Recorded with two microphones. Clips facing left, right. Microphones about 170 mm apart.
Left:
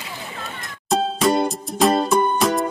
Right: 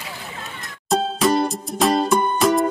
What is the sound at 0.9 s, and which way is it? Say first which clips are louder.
Music: even; centre (ahead or behind).